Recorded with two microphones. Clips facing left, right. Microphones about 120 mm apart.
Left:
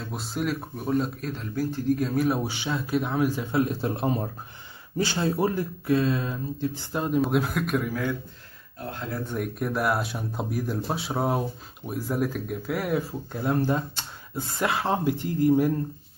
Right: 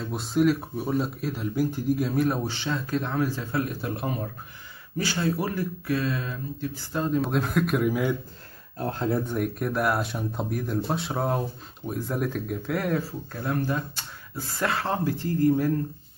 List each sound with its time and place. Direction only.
0.0 s speech: centre (ahead or behind)
1.5 s speech: 15° right (ahead or behind)
2.0 s speech: centre (ahead or behind); by 7.2 s 15° left (ahead or behind)
7.2 s speech: 5° left (ahead or behind)
7.9 s speech: 15° right (ahead or behind)
8.7 s speech: 30° right (ahead or behind)
9.2 s speech: 5° right (ahead or behind)
13.3 s speech: 20° left (ahead or behind)